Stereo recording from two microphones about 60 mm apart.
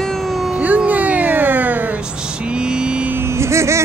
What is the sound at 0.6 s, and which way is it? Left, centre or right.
Speech, right.